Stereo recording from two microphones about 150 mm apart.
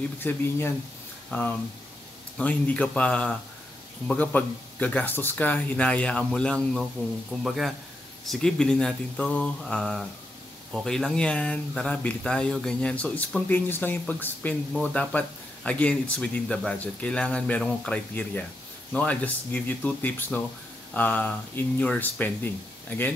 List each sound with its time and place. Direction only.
0.2 s speech: 15° left (ahead or behind)